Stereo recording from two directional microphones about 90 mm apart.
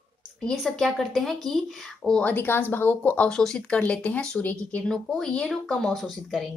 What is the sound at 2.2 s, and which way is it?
Speech, 25° left (ahead or behind).